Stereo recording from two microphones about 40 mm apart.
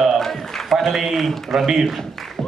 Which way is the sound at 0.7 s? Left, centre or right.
Centre.